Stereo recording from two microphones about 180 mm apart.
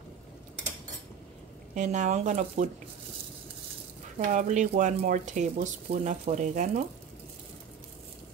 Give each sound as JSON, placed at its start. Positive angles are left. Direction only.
{"t": 1.8, "sound": "speech", "side_deg": -40}
{"t": 4.3, "sound": "speech", "side_deg": -45}